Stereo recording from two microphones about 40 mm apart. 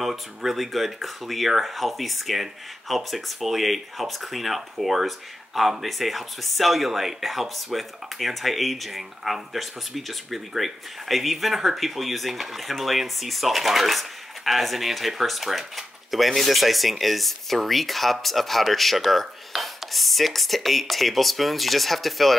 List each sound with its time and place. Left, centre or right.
0.0 s speech: centre